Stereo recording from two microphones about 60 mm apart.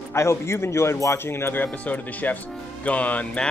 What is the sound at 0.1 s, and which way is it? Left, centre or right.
A man's voice, left.